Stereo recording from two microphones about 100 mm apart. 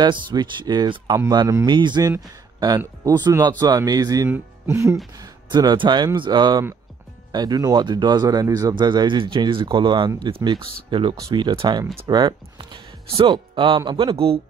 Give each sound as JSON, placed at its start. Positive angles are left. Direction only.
{"t": 0.0, "sound": "speech", "side_deg": -50}
{"t": 4.3, "sound": "speech", "side_deg": -25}
{"t": 5.2, "sound": "speech", "side_deg": -45}
{"t": 8.7, "sound": "speech", "side_deg": -50}
{"t": 14.1, "sound": "speech", "side_deg": -70}